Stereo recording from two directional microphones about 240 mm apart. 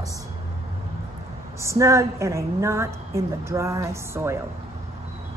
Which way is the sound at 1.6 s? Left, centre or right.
Centre.